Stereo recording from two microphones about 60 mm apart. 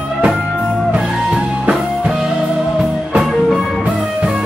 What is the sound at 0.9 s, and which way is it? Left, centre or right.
Music, centre.